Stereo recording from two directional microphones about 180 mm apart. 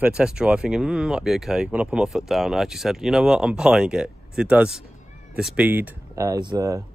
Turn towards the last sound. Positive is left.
turn(degrees=-15)  # may be behind; listen again after turning